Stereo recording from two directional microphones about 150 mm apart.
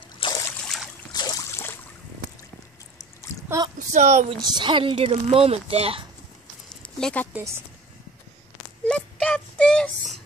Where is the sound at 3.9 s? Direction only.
55° right (ahead or behind).